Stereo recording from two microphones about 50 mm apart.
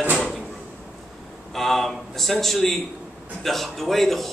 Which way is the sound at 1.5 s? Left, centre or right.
Centre.